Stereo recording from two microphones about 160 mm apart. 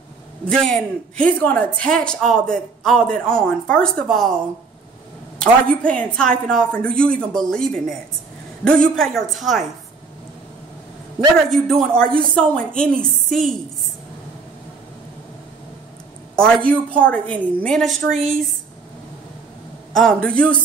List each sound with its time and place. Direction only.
0.5 s a woman's voice: 5° left (ahead or behind)
5.4 s a woman's voice: 5° left (ahead or behind)
11.5 s a woman's voice: 5° left (ahead or behind)
16.3 s a woman's voice: 5° left (ahead or behind)
19.9 s a woman's voice: 5° left (ahead or behind)